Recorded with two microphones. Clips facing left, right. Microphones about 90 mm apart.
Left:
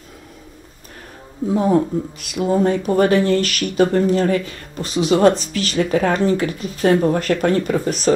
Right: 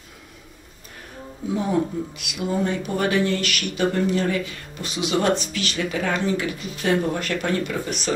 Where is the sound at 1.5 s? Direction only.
40° left (ahead or behind).